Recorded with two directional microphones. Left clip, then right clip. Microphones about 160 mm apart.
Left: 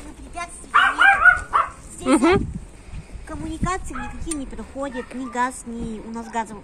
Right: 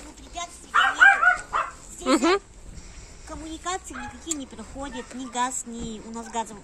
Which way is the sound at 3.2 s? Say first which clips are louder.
Left 5 dB; centre (ahead or behind).